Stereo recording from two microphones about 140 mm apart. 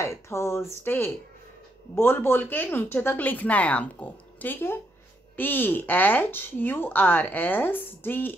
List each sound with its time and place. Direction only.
0.0 s speech: 20° left (ahead or behind)